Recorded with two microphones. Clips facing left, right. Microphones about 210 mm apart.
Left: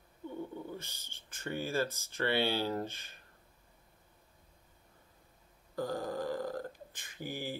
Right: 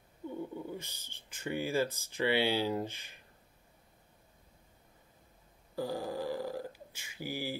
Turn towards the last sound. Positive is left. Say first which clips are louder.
# right 2 dB
turn(degrees=-10)  # may be behind; listen again after turning